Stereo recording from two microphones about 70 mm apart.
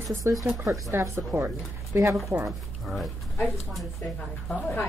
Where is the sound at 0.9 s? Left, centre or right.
Right.